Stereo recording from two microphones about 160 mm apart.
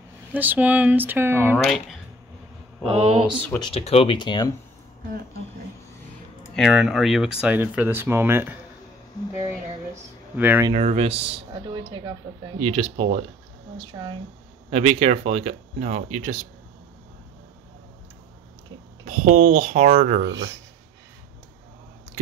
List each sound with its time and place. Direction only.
0.3 s speech: 10° right (ahead or behind)
1.6 s speech: centre (ahead or behind)
2.8 s mantra: 35° right (ahead or behind)
3.5 s speech: 30° left (ahead or behind)
6.5 s speech: centre (ahead or behind)
9.3 s a sound: 15° right (ahead or behind)
10.3 s speech: 10° right (ahead or behind)
10.7 s mantra: 40° right (ahead or behind)
12.5 s mantra: 40° right (ahead or behind)
14.7 s speech: 40° right (ahead or behind)
19.0 s speech: 55° right (ahead or behind)